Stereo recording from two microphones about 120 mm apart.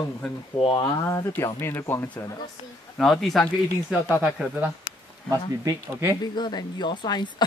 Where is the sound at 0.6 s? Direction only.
45° left (ahead or behind).